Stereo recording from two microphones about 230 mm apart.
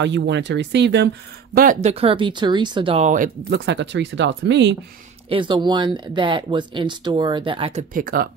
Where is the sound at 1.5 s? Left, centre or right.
Right.